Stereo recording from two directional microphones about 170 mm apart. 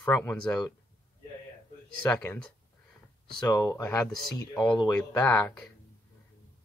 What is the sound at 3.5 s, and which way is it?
Speech, 20° left (ahead or behind).